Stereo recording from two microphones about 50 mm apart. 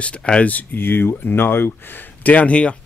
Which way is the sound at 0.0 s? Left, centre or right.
Left.